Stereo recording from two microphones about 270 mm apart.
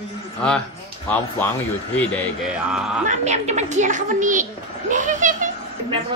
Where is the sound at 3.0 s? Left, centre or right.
Right.